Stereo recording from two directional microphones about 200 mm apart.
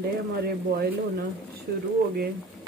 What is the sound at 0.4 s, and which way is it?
Speech, 50° right (ahead or behind).